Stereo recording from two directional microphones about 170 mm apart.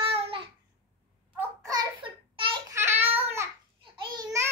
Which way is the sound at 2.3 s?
30° right (ahead or behind).